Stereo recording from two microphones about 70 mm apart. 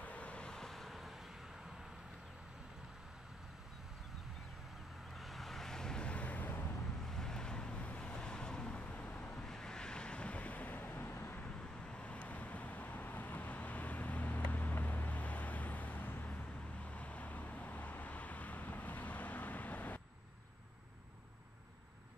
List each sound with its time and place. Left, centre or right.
0.0 s vehicle: centre
5.1 s vehicle: centre; by 6.7 s left
7.1 s vehicle: centre
9.4 s vehicle: centre; by 11.1 s left
11.3 s vehicle: centre
16.8 s vehicle: centre